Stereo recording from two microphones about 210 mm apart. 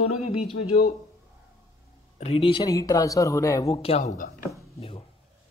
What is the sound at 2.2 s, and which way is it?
A man's voice, 25° left (ahead or behind).